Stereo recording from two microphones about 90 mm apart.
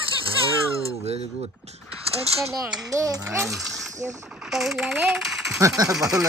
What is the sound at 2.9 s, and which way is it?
Speech, 40° right (ahead or behind).